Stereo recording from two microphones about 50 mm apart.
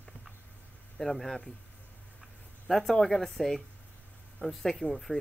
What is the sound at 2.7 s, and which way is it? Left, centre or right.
Speech, centre.